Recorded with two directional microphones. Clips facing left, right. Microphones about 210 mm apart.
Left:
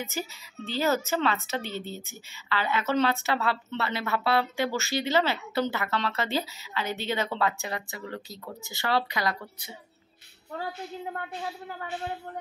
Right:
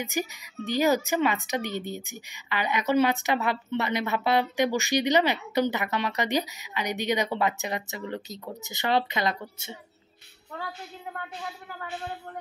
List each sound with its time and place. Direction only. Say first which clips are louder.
0.0 s speech: right 4 dB; 15° right (ahead or behind)